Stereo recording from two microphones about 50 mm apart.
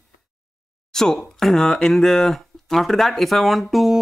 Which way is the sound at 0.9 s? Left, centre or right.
Centre.